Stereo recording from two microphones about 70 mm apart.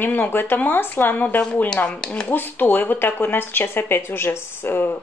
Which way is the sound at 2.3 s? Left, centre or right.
Left.